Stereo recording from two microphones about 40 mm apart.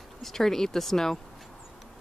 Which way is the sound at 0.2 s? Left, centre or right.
Centre.